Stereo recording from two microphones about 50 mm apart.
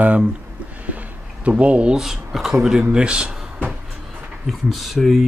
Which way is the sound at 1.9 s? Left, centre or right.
Centre.